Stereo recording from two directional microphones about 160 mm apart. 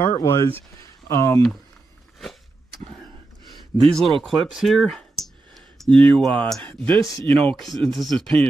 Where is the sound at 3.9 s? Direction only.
Centre (ahead or behind).